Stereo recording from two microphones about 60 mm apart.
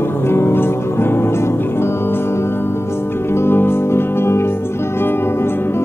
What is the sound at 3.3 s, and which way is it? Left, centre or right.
Music, left.